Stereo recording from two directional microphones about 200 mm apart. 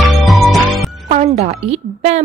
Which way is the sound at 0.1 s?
Centre (ahead or behind).